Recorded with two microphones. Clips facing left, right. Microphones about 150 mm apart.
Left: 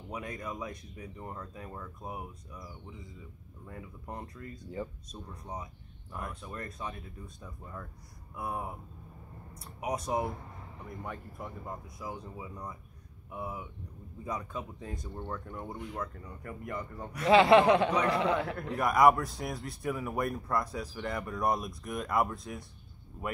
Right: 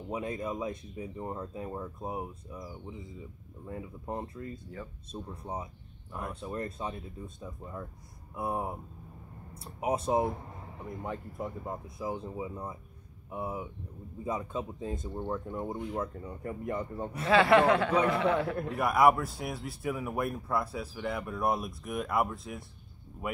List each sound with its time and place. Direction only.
0.1 s speech: 25° right (ahead or behind)
3.6 s speech: 25° right (ahead or behind)
4.8 s speech: 20° left (ahead or behind)
5.1 s speech: 30° right (ahead or behind)
9.8 s speech: 25° right (ahead or behind)
17.3 s speech: 20° left (ahead or behind)
18.8 s speech: 5° right (ahead or behind)